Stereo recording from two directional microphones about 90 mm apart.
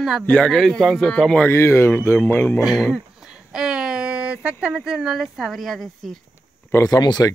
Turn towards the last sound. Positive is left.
turn(degrees=50)  # may be behind; listen again after turning